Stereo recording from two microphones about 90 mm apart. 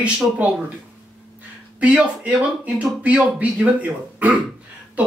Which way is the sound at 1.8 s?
15° right (ahead or behind).